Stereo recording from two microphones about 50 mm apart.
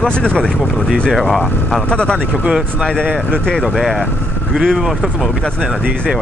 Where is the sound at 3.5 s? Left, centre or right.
Centre.